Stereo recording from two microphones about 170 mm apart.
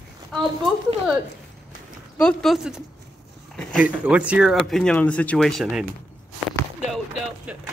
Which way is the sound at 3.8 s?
10° right (ahead or behind).